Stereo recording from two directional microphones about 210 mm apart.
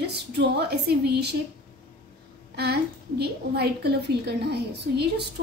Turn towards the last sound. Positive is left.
turn(degrees=-50)  # may be behind; listen again after turning